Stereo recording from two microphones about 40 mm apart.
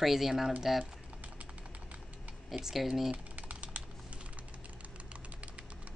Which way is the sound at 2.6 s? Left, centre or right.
Centre.